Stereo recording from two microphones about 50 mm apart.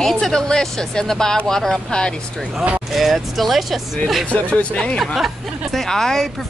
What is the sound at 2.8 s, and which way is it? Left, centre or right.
Speech, centre.